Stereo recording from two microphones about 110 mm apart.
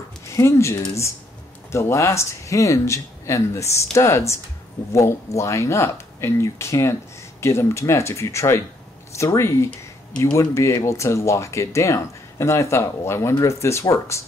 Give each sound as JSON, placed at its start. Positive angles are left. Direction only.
{"t": 0.3, "sound": "speech", "side_deg": 25}